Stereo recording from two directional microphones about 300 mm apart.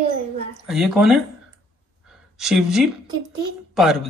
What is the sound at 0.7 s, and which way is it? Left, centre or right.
Speech, centre.